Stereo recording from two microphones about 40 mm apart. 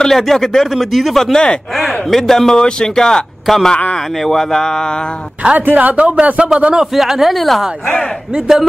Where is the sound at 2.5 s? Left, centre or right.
Centre.